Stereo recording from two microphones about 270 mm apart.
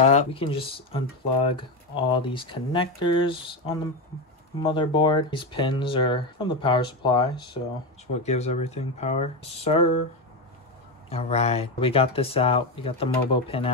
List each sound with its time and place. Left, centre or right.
0.1 s speech: centre
11.1 s speech: left